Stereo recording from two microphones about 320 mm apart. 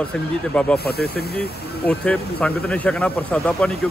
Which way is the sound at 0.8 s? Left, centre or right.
Left.